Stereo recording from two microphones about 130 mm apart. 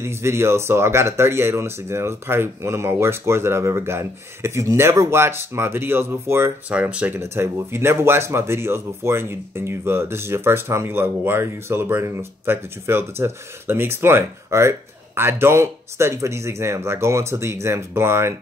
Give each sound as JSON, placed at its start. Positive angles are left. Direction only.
{"t": 0.0, "sound": "speech", "side_deg": -20}